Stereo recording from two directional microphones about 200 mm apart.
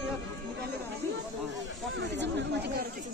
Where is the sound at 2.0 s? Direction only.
60° right (ahead or behind).